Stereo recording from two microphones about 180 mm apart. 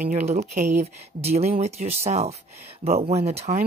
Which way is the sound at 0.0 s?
40° right (ahead or behind).